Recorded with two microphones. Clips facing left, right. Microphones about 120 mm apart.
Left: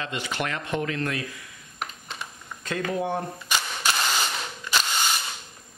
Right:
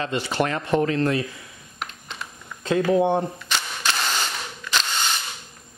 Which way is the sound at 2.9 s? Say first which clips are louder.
Right 7 dB; 25° right (ahead or behind).